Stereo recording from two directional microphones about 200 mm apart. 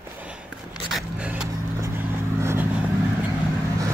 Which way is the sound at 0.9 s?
5° right (ahead or behind).